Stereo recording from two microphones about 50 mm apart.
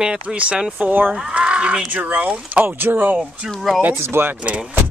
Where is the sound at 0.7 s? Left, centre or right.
Right.